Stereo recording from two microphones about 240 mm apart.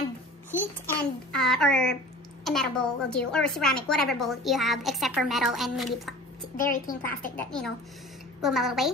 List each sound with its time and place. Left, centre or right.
1.3 s a woman's voice: centre
6.5 s a woman's voice: left
7.3 s a woman's voice: centre